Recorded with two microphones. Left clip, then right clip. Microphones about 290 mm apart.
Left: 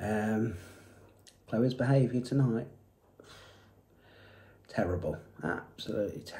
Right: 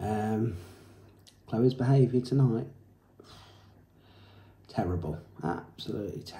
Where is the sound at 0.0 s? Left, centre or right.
Centre.